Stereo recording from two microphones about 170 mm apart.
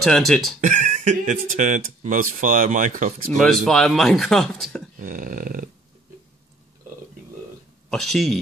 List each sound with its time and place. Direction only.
0.0 s speech: centre (ahead or behind)
0.6 s speech: 45° right (ahead or behind)
3.3 s speech: centre (ahead or behind)
5.0 s speech: 55° right (ahead or behind)
7.9 s speech: centre (ahead or behind)